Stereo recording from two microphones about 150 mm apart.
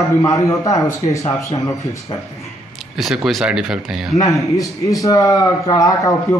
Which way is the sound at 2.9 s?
Centre (ahead or behind).